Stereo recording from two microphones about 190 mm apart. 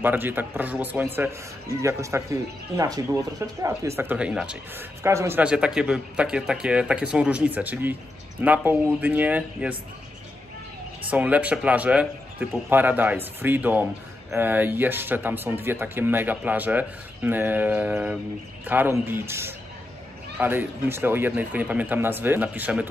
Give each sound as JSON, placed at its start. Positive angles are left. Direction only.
{"t": 0.0, "sound": "speech", "side_deg": -10}
{"t": 11.1, "sound": "speech", "side_deg": -10}